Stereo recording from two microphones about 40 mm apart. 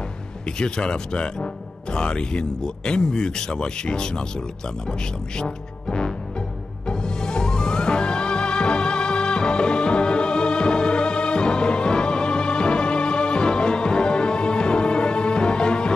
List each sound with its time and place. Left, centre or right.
0.6 s speech: left
5.4 s music: left